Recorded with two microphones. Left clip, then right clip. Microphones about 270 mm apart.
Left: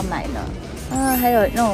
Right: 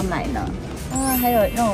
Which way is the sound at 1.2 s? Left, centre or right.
Left.